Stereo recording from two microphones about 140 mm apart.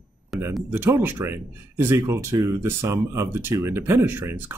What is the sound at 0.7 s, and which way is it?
Speech, 15° right (ahead or behind).